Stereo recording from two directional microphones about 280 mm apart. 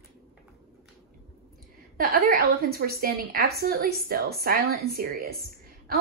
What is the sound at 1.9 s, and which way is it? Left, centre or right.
A woman's voice, right.